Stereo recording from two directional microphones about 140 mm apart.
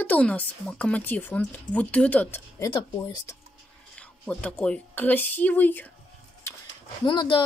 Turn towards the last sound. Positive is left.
turn(degrees=30)  # may be behind; listen again after turning